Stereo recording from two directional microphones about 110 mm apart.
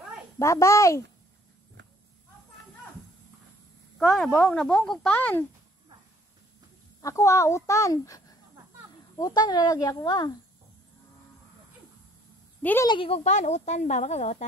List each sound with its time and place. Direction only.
0.4 s speech: 25° left (ahead or behind)
4.3 s speech: 20° left (ahead or behind)
4.6 s speech: 5° left (ahead or behind)
5.1 s speech: 15° left (ahead or behind)
7.0 s speech: 30° left (ahead or behind)
12.8 s speech: 45° left (ahead or behind)
13.1 s speech: 90° left